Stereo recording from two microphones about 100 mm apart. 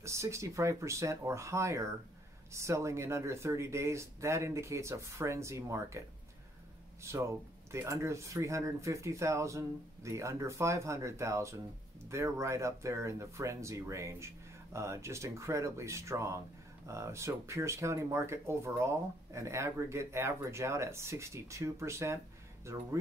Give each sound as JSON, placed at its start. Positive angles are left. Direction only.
{"t": 0.0, "sound": "speech", "side_deg": -30}